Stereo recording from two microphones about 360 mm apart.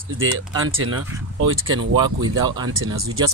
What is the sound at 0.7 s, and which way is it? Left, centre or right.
A man's voice, right.